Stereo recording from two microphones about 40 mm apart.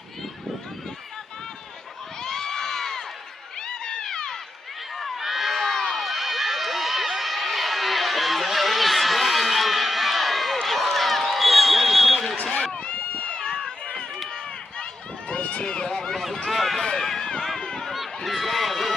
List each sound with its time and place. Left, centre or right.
2.2 s a sound: centre
3.6 s run: centre
4.9 s crowd: centre
12.8 s run: left
14.8 s run: left
15.9 s run: centre
16.8 s run: centre
17.8 s run: centre